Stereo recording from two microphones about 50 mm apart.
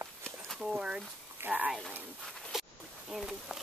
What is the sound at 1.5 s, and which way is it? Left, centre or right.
Speech, right.